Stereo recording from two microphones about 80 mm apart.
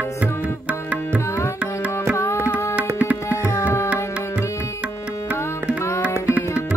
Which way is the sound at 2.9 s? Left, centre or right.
Right.